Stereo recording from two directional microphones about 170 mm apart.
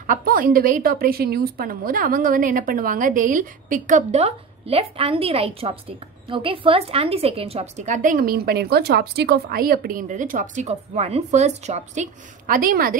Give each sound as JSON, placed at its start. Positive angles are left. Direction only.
{"t": 0.0, "sound": "a woman's voice", "side_deg": -55}